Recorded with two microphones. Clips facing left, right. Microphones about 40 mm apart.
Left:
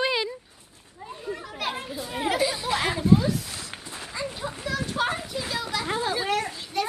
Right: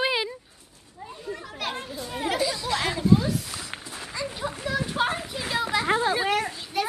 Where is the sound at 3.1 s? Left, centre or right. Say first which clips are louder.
Left 1 dB; centre.